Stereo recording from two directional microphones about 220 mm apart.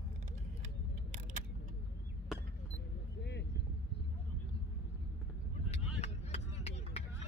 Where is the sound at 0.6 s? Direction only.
35° right (ahead or behind).